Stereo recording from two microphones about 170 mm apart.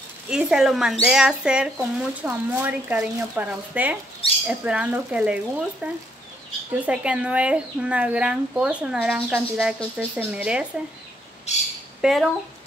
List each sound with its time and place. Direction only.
0.3 s speech: 5° right (ahead or behind)
11.5 s bird: 40° left (ahead or behind)
12.0 s speech: centre (ahead or behind)